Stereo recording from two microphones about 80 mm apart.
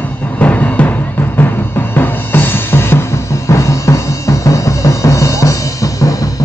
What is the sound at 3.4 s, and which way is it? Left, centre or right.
Music, left.